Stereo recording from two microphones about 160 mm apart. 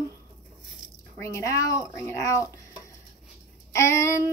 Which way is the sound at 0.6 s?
5° right (ahead or behind).